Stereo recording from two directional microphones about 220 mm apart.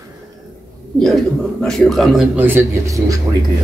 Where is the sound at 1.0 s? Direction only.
Centre (ahead or behind); by 3.2 s 15° right (ahead or behind).